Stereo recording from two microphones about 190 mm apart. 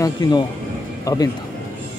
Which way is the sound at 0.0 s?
20° left (ahead or behind).